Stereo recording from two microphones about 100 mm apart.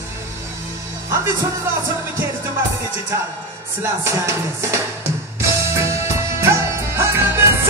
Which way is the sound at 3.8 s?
25° right (ahead or behind).